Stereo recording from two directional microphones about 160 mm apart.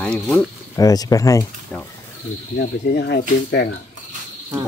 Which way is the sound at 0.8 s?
20° left (ahead or behind).